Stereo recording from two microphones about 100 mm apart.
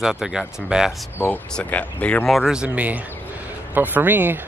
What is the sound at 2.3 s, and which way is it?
Speech, 5° right (ahead or behind).